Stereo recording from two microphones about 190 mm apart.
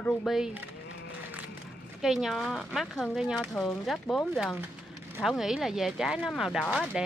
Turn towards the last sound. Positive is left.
turn(degrees=-5)  # may be behind; listen again after turning